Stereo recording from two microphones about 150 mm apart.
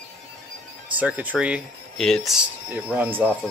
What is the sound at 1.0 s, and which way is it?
Speech, 10° right (ahead or behind).